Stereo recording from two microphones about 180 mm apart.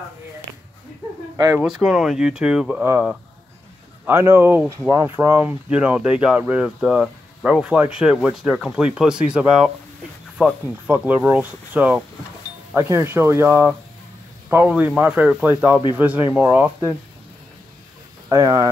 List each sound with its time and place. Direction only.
1.3 s speech: 15° right (ahead or behind)
18.3 s speech: 20° right (ahead or behind)